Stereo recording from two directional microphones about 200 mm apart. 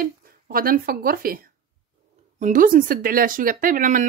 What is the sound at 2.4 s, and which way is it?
Speech, 40° right (ahead or behind).